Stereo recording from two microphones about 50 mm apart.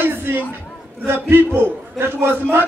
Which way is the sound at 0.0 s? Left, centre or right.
Right.